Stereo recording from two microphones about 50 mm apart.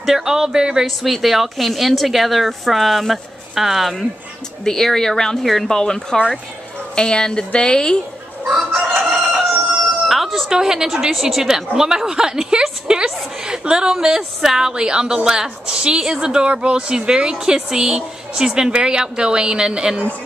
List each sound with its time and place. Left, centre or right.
0.0 s a woman's voice: centre
4.6 s speech: centre
8.7 s chicken: right
10.0 s music: centre
10.6 s a woman's voice: centre